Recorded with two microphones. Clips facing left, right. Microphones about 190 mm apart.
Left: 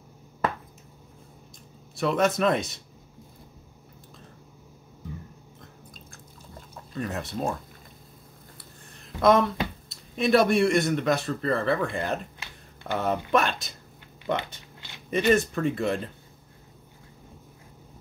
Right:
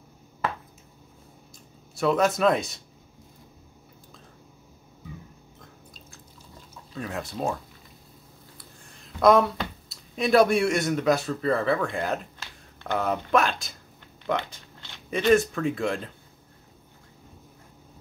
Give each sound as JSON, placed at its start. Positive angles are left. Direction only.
{"t": 2.0, "sound": "speech", "side_deg": 0}
{"t": 6.9, "sound": "speech", "side_deg": 0}
{"t": 9.8, "sound": "speech", "side_deg": 0}